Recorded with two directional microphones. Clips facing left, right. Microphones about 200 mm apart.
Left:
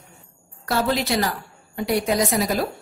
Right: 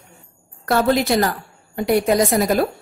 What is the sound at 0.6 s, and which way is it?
A woman's voice, 50° right (ahead or behind).